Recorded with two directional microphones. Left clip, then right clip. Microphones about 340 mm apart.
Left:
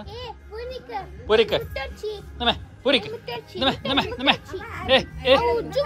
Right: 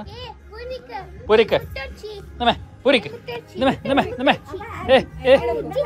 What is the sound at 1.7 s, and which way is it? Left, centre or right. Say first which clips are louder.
Music: left 2 dB; left.